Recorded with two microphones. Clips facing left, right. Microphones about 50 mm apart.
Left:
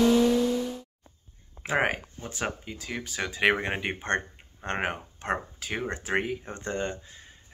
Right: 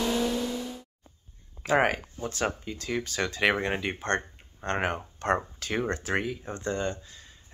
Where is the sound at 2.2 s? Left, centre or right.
Centre.